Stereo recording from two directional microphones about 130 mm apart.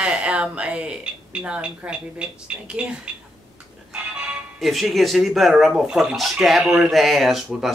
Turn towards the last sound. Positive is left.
turn(degrees=0)  # may be behind; listen again after turning